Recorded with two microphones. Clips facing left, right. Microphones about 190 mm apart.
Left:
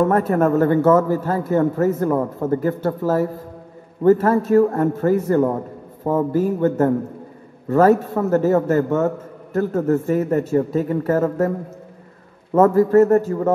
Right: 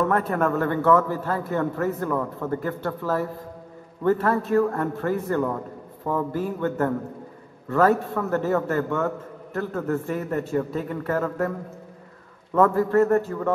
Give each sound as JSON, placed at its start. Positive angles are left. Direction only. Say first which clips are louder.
{"t": 0.0, "sound": "a man's voice", "louder": "left 6 dB", "side_deg": 40}
{"t": 12.5, "sound": "a man's voice", "louder": "left 6 dB", "side_deg": 40}